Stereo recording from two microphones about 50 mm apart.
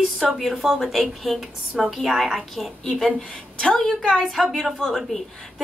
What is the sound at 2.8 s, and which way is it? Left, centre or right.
Speech, centre.